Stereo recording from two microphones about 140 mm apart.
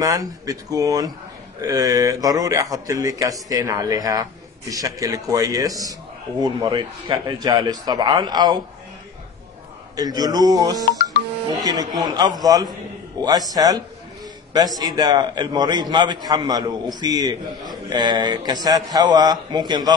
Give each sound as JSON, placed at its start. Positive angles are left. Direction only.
{"t": 0.0, "sound": "a man's voice", "side_deg": -25}
{"t": 9.9, "sound": "a man's voice", "side_deg": -25}